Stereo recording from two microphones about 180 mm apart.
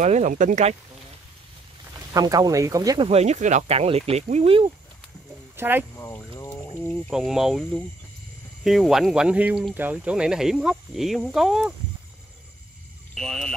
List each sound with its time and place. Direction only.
0.0 s speech: 45° right (ahead or behind)
2.1 s speech: 20° right (ahead or behind)
3.1 s speech: 35° right (ahead or behind)
5.6 s speech: 10° right (ahead or behind)
5.9 s speech: 15° left (ahead or behind)
6.9 s speech: centre (ahead or behind)
13.1 s speech: 5° left (ahead or behind)